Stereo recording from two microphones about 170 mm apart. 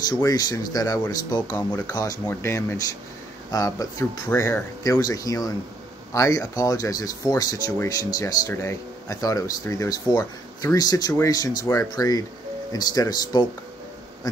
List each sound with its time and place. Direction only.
0.2 s speech: 20° left (ahead or behind)